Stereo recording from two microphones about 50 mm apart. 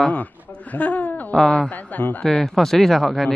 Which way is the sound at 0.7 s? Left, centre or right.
Left.